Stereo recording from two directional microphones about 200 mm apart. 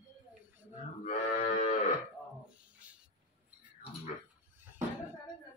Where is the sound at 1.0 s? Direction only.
35° left (ahead or behind).